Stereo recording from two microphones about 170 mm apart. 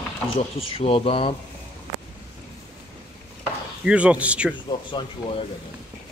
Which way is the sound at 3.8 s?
5° right (ahead or behind).